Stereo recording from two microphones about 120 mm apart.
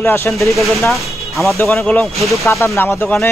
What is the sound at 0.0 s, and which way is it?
Speech, 20° left (ahead or behind).